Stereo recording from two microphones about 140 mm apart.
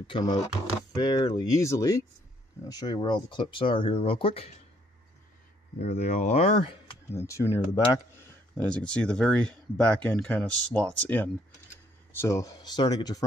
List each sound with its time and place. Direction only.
0.0 s speech: 35° left (ahead or behind)
5.8 s speech: 55° left (ahead or behind)
7.1 s speech: 20° left (ahead or behind)
8.6 s speech: 10° left (ahead or behind); by 13.2 s 30° left (ahead or behind)